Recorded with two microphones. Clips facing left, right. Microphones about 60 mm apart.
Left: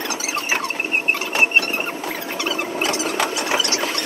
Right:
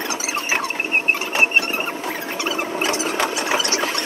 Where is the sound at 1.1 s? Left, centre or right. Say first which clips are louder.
Left 1 dB; right.